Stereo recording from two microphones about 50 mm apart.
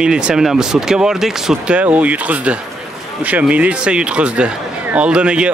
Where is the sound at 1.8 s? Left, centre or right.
Right.